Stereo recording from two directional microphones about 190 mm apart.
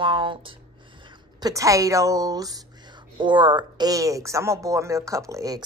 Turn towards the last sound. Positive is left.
turn(degrees=-15)  # may be behind; listen again after turning